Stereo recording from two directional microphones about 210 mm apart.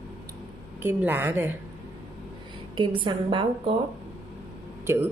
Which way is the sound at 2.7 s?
20° right (ahead or behind).